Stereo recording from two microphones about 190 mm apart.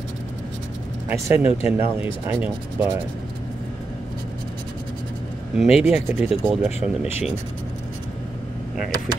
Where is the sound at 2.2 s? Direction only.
10° right (ahead or behind).